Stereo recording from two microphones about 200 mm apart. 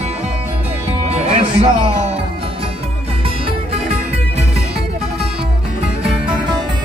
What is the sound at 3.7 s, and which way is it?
Music, 30° right (ahead or behind).